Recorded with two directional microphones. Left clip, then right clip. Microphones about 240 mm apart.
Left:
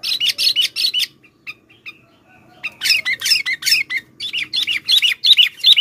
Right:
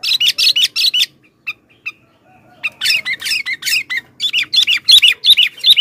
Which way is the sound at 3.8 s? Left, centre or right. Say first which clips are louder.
Right 3 dB; centre.